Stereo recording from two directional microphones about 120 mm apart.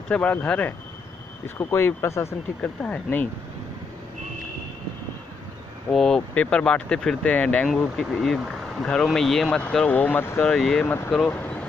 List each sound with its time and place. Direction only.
0.1 s speech: 10° left (ahead or behind)
2.8 s speech: 10° left (ahead or behind)
5.9 s speech: 5° left (ahead or behind)
10.4 s speech: 5° left (ahead or behind)